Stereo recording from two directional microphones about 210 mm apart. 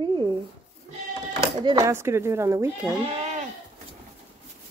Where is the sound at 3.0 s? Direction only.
30° right (ahead or behind).